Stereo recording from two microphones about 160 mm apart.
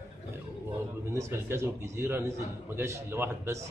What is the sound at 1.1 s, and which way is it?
A man's voice, 15° right (ahead or behind).